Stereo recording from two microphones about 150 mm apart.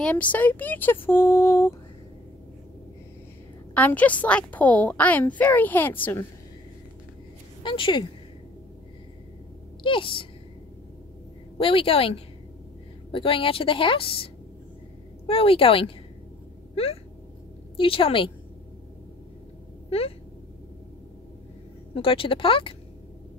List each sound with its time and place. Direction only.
0.0 s a child's voice: 10° left (ahead or behind)
3.7 s a child's voice: 10° left (ahead or behind)
7.6 s a woman's voice: 35° left (ahead or behind)
9.8 s a woman's voice: 35° left (ahead or behind)
11.5 s a woman's voice: 40° left (ahead or behind)
13.1 s a woman's voice: 35° left (ahead or behind)
19.9 s speech: 40° left (ahead or behind)
21.9 s a woman's voice: 35° left (ahead or behind)